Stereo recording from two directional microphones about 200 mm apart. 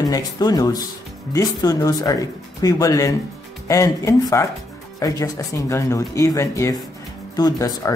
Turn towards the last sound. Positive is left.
turn(degrees=15)  # may be behind; listen again after turning